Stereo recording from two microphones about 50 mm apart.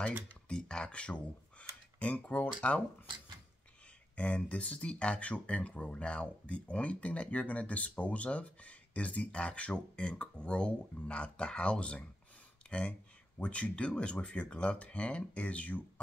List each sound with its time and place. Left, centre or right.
0.5 s speech: centre
4.1 s speech: left
12.6 s a sound: left
13.4 s speech: left